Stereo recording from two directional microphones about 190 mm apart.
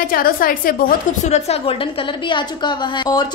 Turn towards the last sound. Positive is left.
turn(degrees=20)  # may be behind; listen again after turning